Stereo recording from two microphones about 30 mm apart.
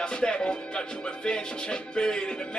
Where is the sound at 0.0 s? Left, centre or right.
Left.